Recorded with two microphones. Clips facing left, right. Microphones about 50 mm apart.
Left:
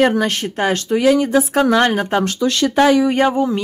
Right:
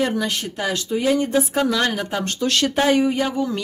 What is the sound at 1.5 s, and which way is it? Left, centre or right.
Speech, left.